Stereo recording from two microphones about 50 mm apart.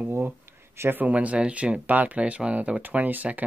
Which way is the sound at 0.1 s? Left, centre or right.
Right.